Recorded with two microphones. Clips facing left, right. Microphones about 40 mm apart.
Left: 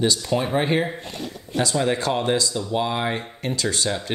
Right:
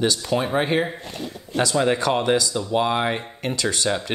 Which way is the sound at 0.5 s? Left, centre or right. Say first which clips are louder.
Even; right.